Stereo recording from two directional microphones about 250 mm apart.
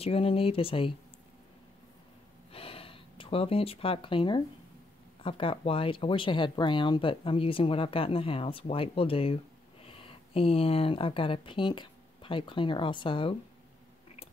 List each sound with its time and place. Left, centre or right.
0.0 s speech: left
2.5 s a sound: left
5.2 s speech: left